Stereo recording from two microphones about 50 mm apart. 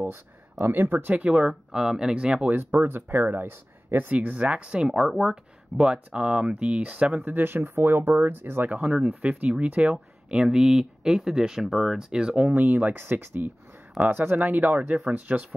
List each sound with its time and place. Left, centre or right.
0.7 s speech: right
0.9 s speech: right
1.5 s speech: centre
2.5 s speech: right
4.1 s speech: right
4.8 s speech: centre
5.3 s speech: centre
7.2 s speech: right
8.6 s speech: right
12.5 s speech: right
12.9 s speech: right
14.3 s speech: right